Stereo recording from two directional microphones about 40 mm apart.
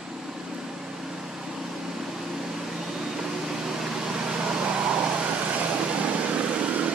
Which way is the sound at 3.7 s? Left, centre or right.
Centre.